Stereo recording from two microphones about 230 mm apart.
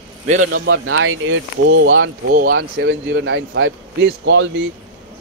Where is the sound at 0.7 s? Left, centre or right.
Right.